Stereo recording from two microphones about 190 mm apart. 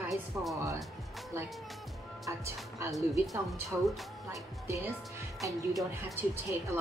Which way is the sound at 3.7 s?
5° right (ahead or behind).